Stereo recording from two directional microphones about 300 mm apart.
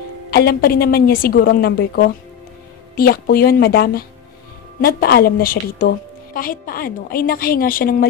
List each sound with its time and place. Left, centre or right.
0.3 s a woman's voice: left